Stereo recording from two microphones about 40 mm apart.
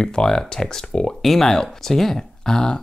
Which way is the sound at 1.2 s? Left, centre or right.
Centre.